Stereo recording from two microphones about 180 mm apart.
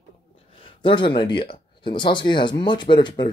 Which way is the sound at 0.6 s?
30° left (ahead or behind).